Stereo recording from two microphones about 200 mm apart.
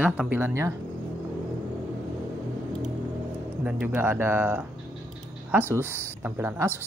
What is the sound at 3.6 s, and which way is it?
Speech, 10° right (ahead or behind).